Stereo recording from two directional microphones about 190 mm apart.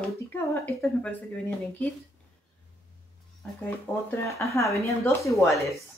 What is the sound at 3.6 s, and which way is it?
A woman's voice, 10° left (ahead or behind).